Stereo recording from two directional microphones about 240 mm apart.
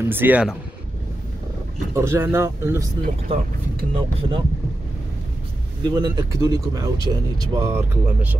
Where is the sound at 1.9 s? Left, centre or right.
Centre.